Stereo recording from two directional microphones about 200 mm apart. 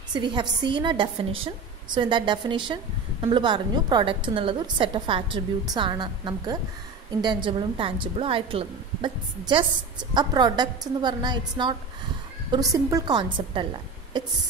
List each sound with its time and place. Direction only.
0.1 s a woman's voice: 20° right (ahead or behind)